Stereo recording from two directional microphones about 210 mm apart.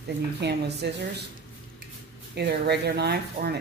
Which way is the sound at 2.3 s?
50° right (ahead or behind).